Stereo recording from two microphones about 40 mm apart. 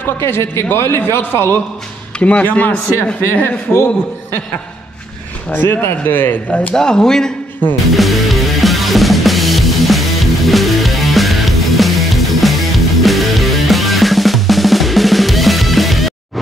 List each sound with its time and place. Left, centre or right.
0.0 s a man's voice: left
2.1 s speech: left
2.4 s speech: left
3.7 s a man's voice: left
5.5 s speech: left
6.0 s speech: left
6.7 s speech: centre
7.9 s music: centre